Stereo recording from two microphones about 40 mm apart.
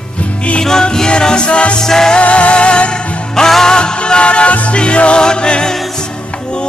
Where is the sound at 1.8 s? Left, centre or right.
Centre.